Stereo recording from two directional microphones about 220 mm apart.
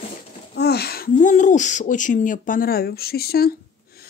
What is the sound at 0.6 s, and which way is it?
Speech, 45° left (ahead or behind).